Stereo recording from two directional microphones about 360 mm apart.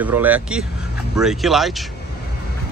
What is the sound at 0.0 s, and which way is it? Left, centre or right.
Speech, centre.